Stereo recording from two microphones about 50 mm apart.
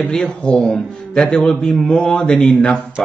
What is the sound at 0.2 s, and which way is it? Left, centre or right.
A man's voice, centre.